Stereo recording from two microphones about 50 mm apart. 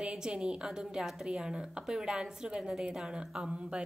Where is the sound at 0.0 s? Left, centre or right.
Centre.